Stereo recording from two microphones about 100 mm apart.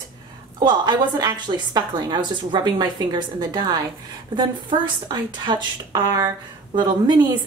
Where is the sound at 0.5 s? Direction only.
45° right (ahead or behind).